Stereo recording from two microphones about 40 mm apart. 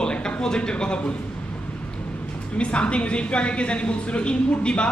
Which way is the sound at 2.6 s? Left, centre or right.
Left.